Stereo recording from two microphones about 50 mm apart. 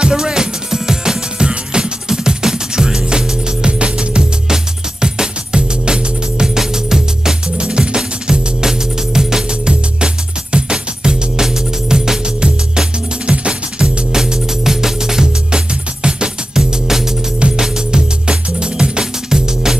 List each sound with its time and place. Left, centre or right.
0.0 s music: centre